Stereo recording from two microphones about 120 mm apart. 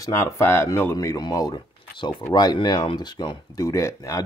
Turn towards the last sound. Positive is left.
turn(degrees=25)  # may be behind; listen again after turning